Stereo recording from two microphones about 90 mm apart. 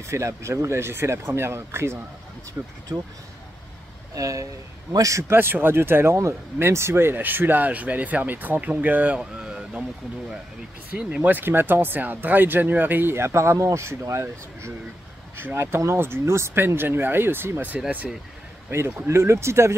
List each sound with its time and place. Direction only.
0.1 s speech: 30° right (ahead or behind)
4.1 s speech: 40° right (ahead or behind)
5.3 s speech: 25° right (ahead or behind)
11.0 s speech: 10° right (ahead or behind)
18.7 s speech: 25° right (ahead or behind)